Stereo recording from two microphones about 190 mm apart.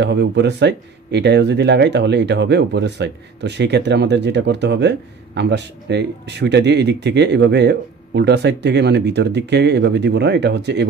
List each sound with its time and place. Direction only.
0.0 s speech: 65° right (ahead or behind)